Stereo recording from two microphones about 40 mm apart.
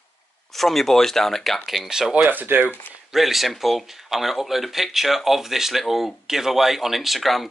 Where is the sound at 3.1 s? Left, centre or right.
Centre.